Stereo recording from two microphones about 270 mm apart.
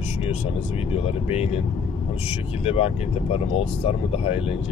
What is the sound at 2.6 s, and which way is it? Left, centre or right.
Speech, left.